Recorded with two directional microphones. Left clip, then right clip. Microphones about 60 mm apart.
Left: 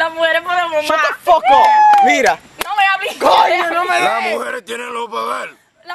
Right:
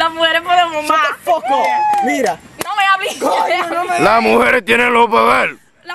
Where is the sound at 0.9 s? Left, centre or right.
Centre.